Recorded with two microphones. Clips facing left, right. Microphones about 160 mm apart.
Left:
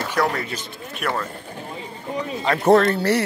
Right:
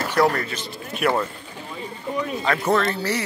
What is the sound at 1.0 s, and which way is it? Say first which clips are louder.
Speech: right 5 dB; 5° right (ahead or behind).